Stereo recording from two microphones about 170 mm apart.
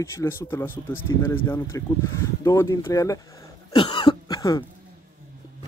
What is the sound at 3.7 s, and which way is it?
Cough, 30° left (ahead or behind).